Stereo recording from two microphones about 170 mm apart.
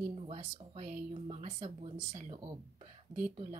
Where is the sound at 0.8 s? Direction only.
50° right (ahead or behind).